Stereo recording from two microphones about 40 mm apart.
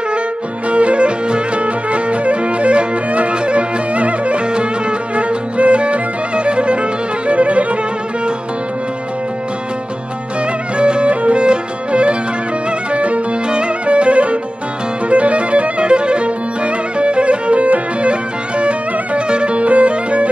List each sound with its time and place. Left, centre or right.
0.7 s music: right
10.8 s music: right